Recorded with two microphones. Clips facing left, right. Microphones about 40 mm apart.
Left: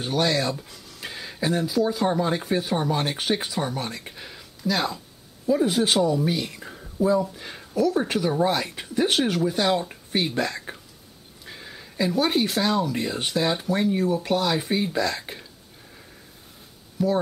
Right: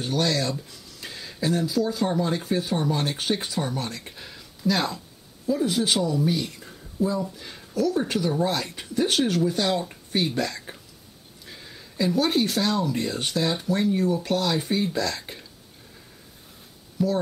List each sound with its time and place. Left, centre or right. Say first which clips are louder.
0.0 s speech: left 1 dB; centre
5.5 s speech: left 2 dB; centre
6.6 s a sound: left 4 dB; left
7.0 s speech: left 4 dB; centre
17.0 s speech: left 1 dB; centre